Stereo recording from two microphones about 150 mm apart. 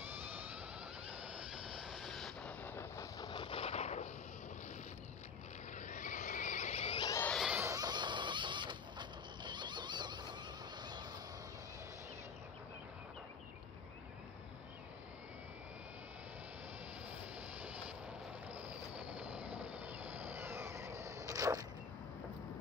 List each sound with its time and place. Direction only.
1.1 s vehicle: 5° right (ahead or behind)
2.6 s a sound: 15° left (ahead or behind); by 4.1 s 50° left (ahead or behind)
5.8 s vehicle: 55° left (ahead or behind)
7.3 s goat: 5° right (ahead or behind)
7.6 s printer: 25° right (ahead or behind)
10.8 s fowl: 30° right (ahead or behind)
18.9 s train: 10° right (ahead or behind)
19.6 s vehicle: 10° right (ahead or behind)